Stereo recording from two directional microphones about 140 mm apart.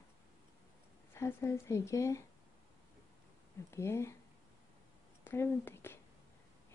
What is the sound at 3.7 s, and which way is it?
Speech, 20° left (ahead or behind).